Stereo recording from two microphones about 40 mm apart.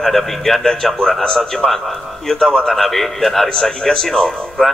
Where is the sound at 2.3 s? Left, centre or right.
Centre.